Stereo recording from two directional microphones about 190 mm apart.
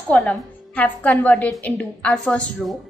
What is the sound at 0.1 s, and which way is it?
A woman's voice, 5° left (ahead or behind).